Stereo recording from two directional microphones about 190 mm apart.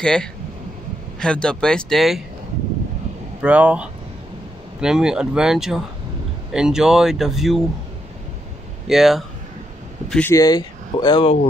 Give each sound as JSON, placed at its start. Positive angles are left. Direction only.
{"t": 0.0, "sound": "speech", "side_deg": 5}
{"t": 3.4, "sound": "speech", "side_deg": -5}
{"t": 8.8, "sound": "speech", "side_deg": 0}
{"t": 10.3, "sound": "speech", "side_deg": 20}